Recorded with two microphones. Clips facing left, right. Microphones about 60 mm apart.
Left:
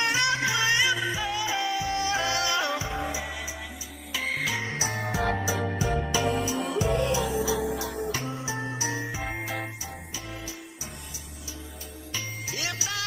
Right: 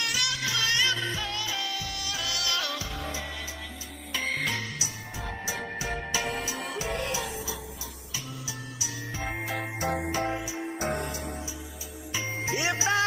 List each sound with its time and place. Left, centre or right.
0.0 s music: left
4.1 s music: centre
9.2 s music: centre
12.4 s music: right